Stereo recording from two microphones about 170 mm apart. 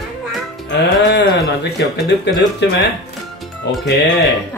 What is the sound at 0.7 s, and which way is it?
Speech, 90° left.